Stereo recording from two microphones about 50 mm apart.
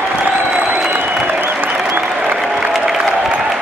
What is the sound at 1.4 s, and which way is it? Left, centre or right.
Applause, right.